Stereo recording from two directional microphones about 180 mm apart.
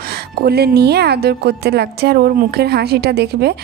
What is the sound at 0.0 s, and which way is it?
A woman's voice, 60° right (ahead or behind).